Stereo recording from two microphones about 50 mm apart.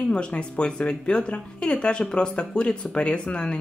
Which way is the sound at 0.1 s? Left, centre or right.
Centre.